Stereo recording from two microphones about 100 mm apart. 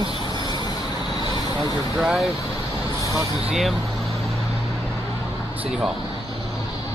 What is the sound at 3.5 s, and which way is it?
Vehicle, centre (ahead or behind).